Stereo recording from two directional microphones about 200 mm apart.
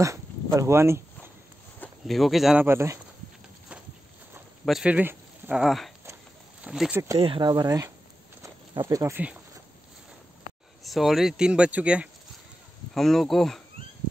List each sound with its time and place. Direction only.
0.0 s dog: 15° right (ahead or behind)
1.8 s speech: centre (ahead or behind)
4.6 s speech: 5° right (ahead or behind)
7.2 s speech: 25° right (ahead or behind); by 9.4 s 10° right (ahead or behind)
10.8 s speech: centre (ahead or behind)